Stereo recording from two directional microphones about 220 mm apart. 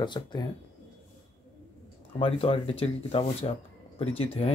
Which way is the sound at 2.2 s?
25° left (ahead or behind).